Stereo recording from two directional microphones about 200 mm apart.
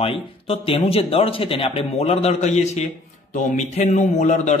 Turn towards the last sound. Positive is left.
turn(degrees=35)  # may be behind; listen again after turning